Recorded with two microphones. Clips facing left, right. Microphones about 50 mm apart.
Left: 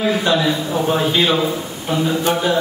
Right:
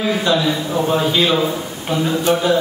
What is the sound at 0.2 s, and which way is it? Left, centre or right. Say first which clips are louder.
A man's voice: even; left.